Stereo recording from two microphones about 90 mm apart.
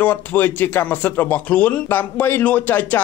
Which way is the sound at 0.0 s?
20° left (ahead or behind).